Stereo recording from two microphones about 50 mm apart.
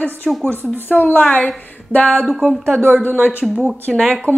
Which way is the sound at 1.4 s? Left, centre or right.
Left.